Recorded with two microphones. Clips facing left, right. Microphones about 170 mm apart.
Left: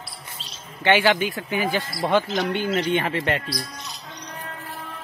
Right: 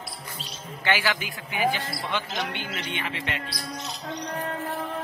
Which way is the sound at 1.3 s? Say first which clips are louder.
Left 2 dB; 45° left (ahead or behind).